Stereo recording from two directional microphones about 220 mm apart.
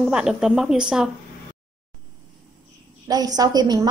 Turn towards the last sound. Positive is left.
turn(degrees=-15)  # may be behind; listen again after turning